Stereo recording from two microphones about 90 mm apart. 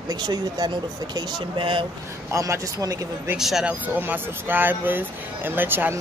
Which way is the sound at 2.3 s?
35° right (ahead or behind).